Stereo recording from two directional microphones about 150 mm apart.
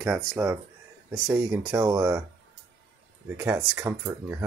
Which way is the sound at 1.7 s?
25° right (ahead or behind).